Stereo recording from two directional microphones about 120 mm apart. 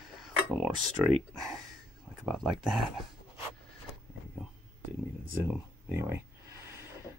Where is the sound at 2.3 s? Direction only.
Centre (ahead or behind).